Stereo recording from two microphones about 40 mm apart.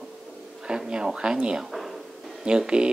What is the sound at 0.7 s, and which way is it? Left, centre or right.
Speech, right.